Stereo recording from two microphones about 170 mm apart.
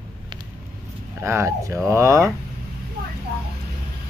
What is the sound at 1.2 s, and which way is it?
Speech, 15° right (ahead or behind).